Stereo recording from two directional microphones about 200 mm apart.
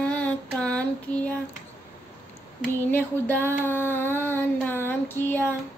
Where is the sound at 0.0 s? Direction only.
5° left (ahead or behind).